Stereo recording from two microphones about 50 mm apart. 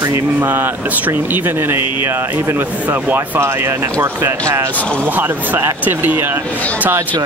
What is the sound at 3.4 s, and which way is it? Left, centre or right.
Speech, right.